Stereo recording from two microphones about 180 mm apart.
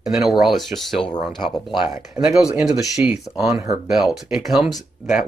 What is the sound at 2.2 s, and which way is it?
Speech, 5° right (ahead or behind).